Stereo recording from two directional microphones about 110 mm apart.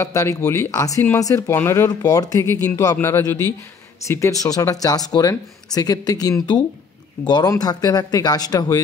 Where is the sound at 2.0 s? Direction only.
35° left (ahead or behind).